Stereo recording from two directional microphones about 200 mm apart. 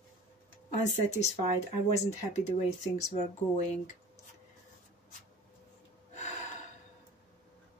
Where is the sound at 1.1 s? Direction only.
35° left (ahead or behind).